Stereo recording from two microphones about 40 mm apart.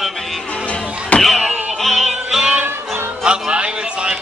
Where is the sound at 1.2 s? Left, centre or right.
Centre.